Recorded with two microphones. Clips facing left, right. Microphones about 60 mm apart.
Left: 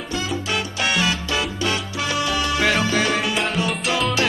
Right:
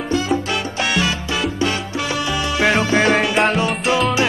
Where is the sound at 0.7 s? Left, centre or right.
Right.